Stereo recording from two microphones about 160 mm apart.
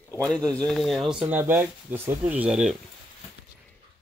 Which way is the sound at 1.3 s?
10° right (ahead or behind).